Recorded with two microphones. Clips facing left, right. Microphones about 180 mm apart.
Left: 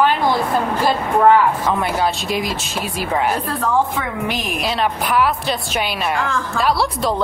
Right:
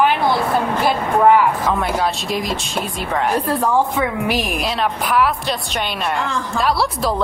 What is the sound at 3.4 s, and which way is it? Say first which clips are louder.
A woman's voice: right 2 dB; 15° right (ahead or behind).